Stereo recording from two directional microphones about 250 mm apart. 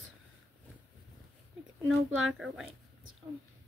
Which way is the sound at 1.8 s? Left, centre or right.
Right.